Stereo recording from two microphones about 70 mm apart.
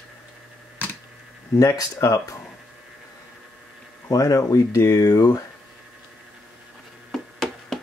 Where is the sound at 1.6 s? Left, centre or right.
Left.